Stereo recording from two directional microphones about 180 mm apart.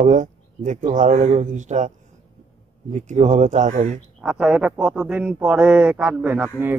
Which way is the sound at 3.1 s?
40° right (ahead or behind).